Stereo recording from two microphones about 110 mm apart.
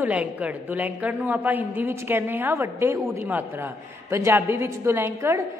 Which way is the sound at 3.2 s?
15° right (ahead or behind).